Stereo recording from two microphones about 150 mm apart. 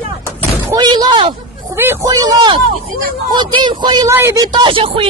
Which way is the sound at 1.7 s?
15° right (ahead or behind).